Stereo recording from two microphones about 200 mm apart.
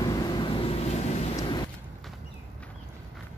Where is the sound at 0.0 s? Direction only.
20° left (ahead or behind).